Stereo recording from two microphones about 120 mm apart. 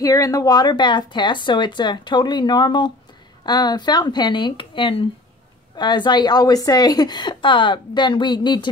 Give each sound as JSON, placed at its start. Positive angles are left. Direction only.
{"t": 0.0, "sound": "speech", "side_deg": 30}